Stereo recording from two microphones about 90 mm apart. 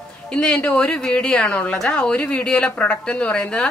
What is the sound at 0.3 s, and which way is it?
A woman's voice, 10° left (ahead or behind).